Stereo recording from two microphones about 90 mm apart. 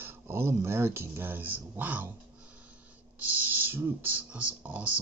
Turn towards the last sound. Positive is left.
turn(degrees=-15)  # may be behind; listen again after turning